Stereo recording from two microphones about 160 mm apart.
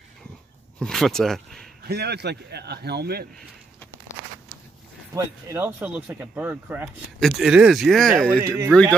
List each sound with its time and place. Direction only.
0.7 s speech: centre (ahead or behind)
1.8 s a man's voice: 85° right
5.1 s speech: 15° right (ahead or behind); by 8.3 s centre (ahead or behind)
8.3 s speech: 15° right (ahead or behind)